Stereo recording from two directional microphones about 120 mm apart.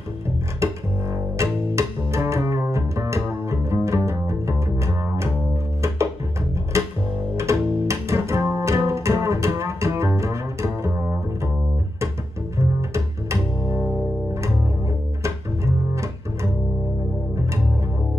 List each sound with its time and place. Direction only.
0.6 s double bass: 25° right (ahead or behind)
1.1 s music: 25° right (ahead or behind)
6.7 s music: 25° right (ahead or behind)
8.5 s double bass: 25° right (ahead or behind)
12.5 s double bass: 25° right (ahead or behind)
13.7 s music: 10° right (ahead or behind)
15.2 s double bass: 25° right (ahead or behind)